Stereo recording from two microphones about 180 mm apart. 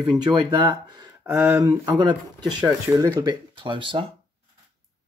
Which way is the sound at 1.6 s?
20° right (ahead or behind).